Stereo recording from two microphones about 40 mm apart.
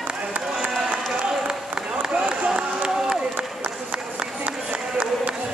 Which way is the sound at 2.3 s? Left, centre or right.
Right.